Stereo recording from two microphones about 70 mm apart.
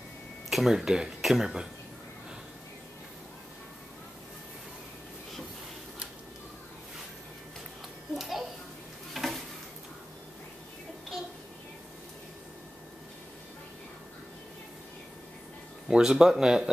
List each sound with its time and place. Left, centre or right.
0.5 s speech: centre
8.2 s a sound: centre
15.9 s speech: centre